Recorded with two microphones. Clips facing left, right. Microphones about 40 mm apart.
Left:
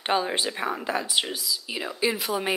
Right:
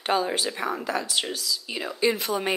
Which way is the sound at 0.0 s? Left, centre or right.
Centre.